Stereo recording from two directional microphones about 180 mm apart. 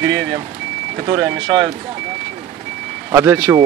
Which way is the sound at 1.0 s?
25° right (ahead or behind).